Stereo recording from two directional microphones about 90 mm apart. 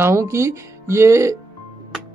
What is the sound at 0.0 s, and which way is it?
Speech, 30° right (ahead or behind).